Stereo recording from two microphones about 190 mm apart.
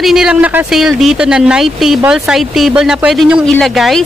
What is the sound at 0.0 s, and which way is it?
A woman's voice, 5° right (ahead or behind).